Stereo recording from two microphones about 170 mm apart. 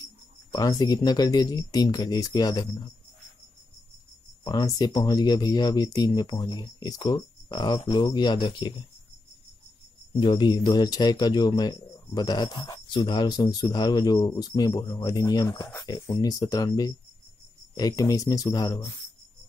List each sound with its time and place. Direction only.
0.5 s speech: 20° left (ahead or behind)
4.5 s speech: 25° left (ahead or behind)
10.1 s speech: 25° left (ahead or behind)